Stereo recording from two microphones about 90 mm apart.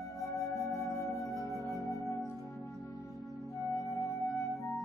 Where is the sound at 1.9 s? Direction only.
35° left (ahead or behind).